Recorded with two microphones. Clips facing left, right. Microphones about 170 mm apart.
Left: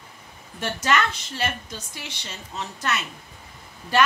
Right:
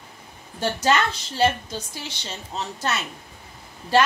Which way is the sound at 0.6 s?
30° right (ahead or behind).